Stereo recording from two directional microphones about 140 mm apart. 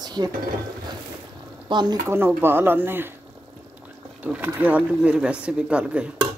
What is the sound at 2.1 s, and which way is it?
Speech, 15° right (ahead or behind).